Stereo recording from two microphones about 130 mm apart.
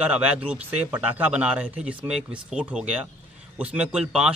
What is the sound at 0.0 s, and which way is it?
A man's voice, 10° right (ahead or behind).